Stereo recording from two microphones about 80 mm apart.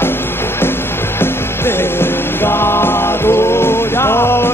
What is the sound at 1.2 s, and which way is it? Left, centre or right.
Music, left.